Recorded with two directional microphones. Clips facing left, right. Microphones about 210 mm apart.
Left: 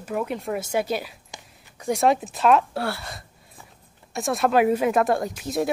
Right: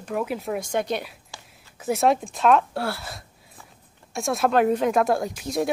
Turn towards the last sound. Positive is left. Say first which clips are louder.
# even
turn(degrees=0)  # may be behind; listen again after turning